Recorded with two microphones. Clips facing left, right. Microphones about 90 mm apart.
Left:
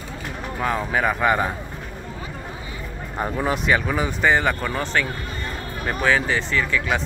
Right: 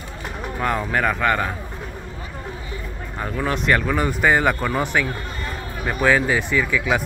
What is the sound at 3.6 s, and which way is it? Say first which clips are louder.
Speech: right 4 dB; 5° left (ahead or behind).